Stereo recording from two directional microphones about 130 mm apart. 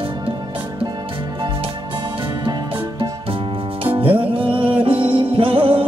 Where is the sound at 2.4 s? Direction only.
40° right (ahead or behind).